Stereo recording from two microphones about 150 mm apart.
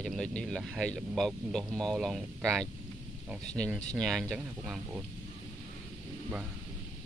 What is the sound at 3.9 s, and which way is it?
Speech, centre (ahead or behind).